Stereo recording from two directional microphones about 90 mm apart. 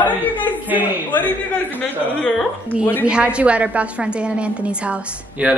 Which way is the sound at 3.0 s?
10° right (ahead or behind).